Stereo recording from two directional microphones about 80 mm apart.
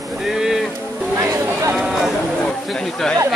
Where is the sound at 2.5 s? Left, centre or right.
Centre.